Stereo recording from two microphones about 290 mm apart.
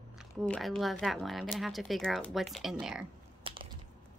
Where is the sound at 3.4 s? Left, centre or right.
Centre.